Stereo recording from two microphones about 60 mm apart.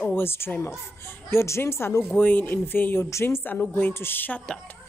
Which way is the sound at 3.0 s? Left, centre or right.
Left.